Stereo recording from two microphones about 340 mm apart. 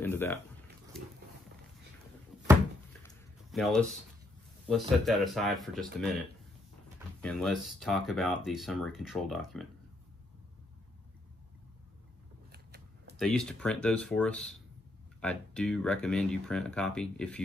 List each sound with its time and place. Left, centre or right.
0.0 s speech: centre
3.5 s speech: centre
7.2 s speech: centre
12.5 s scissors: right
13.2 s speech: centre